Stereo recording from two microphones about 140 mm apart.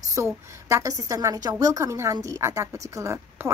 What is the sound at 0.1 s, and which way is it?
A woman's voice, 20° right (ahead or behind).